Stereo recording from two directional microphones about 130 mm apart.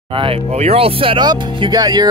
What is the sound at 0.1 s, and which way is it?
Speech, 45° right (ahead or behind).